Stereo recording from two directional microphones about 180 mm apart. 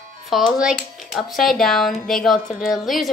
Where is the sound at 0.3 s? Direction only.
Centre (ahead or behind).